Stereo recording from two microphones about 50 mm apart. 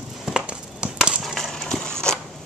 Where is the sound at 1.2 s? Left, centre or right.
Centre.